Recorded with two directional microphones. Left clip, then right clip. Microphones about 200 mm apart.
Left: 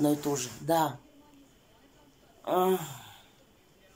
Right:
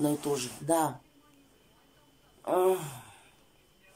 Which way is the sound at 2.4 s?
5° right (ahead or behind).